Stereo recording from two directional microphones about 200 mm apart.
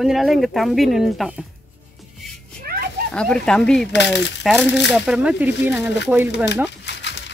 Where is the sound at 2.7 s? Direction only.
50° right (ahead or behind).